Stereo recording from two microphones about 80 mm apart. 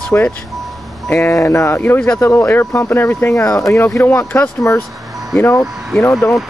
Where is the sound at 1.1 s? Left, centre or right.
Left.